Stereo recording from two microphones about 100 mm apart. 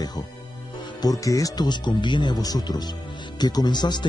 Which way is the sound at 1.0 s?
35° left (ahead or behind).